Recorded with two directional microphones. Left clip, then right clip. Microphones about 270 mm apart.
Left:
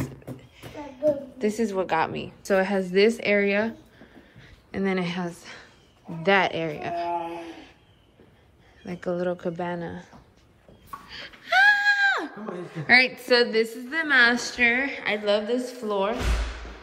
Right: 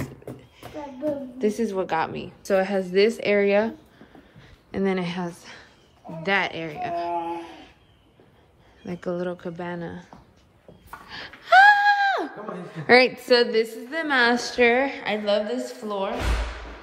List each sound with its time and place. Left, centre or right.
0.0 s a sound: centre
1.4 s a woman's voice: centre
8.8 s a woman's voice: centre
11.1 s wheeze: centre
12.9 s a woman's voice: centre